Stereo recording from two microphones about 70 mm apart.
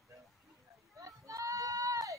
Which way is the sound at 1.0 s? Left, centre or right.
Right.